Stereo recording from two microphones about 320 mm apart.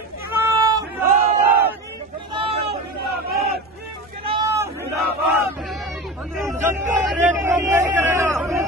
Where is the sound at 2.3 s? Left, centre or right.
Centre.